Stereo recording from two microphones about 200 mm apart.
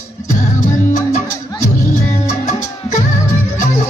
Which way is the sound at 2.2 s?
35° left (ahead or behind).